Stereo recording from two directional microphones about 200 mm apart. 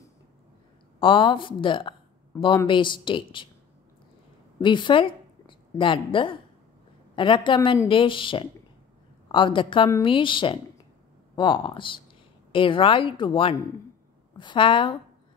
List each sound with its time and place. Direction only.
0.9 s a woman's voice: 25° left (ahead or behind)
4.6 s a woman's voice: 25° left (ahead or behind)